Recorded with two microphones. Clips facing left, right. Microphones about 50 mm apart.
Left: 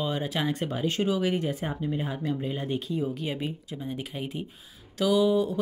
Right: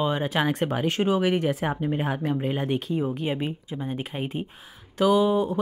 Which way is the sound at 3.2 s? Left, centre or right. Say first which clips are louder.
Right 4 dB; right.